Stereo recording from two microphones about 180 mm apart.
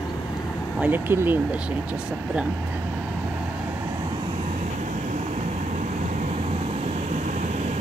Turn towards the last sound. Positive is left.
turn(degrees=-40)  # may be behind; listen again after turning